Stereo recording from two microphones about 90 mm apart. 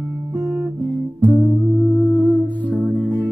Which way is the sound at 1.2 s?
15° left (ahead or behind).